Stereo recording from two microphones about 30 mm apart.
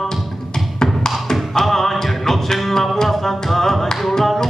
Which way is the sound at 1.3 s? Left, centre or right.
Centre.